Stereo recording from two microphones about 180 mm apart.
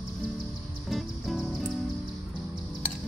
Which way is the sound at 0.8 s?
Centre (ahead or behind).